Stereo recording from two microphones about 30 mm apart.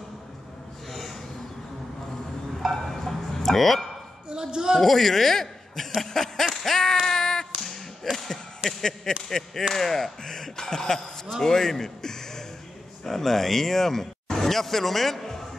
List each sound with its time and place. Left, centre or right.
0.8 s gasp: centre
2.6 s a sound: centre
4.3 s speech: right
4.8 s speech: centre
7.1 s a sound: centre
9.3 s speech: centre
10.2 s a man's voice: left